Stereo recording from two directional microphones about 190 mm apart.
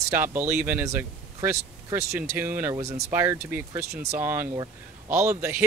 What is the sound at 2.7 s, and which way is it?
Speech, 35° right (ahead or behind).